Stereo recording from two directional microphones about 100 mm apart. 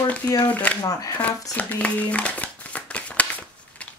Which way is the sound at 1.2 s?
15° left (ahead or behind).